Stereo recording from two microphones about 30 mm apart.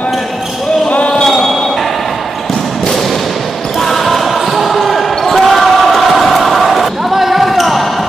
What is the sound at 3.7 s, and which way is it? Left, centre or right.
Basketball bounce, centre.